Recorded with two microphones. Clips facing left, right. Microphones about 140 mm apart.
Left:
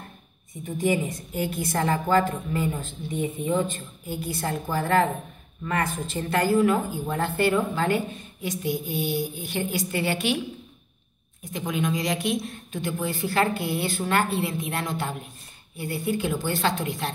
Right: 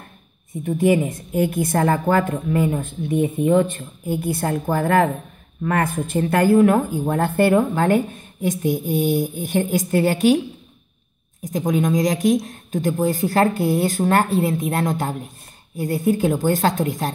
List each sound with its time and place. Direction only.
0.7 s speech: 55° right (ahead or behind)
11.4 s speech: 40° right (ahead or behind)